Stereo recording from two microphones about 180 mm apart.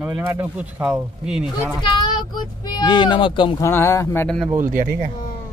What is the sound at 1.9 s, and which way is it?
Speech, 25° left (ahead or behind).